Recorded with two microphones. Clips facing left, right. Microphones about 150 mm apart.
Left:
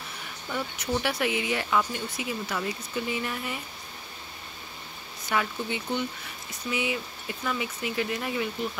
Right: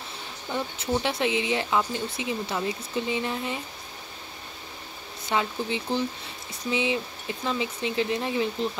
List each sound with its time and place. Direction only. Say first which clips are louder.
0.5 s speech: right 2 dB; 25° right (ahead or behind)
5.3 s speech: right 2 dB; 25° right (ahead or behind)